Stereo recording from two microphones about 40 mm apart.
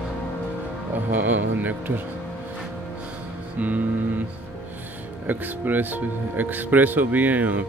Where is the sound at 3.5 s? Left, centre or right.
Right.